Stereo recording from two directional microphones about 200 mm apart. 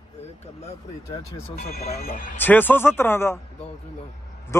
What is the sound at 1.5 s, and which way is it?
Speech, 50° left (ahead or behind).